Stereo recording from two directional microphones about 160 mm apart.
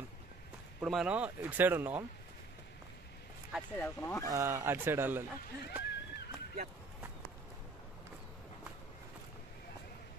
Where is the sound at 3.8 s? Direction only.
20° left (ahead or behind).